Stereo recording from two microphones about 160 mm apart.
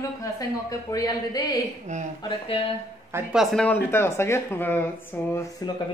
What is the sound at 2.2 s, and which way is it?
Speech, 35° left (ahead or behind).